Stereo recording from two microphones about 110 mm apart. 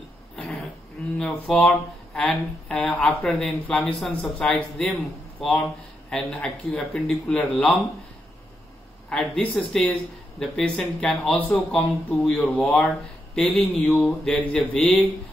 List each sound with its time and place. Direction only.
1.1 s a man's voice: 5° left (ahead or behind)
9.1 s a man's voice: 5° left (ahead or behind)
11.3 s a man's voice: 15° left (ahead or behind)